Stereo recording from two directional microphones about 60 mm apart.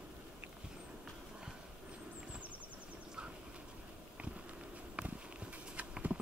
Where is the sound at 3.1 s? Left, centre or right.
Centre.